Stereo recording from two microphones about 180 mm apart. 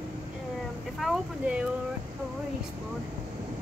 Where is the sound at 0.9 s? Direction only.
Centre (ahead or behind).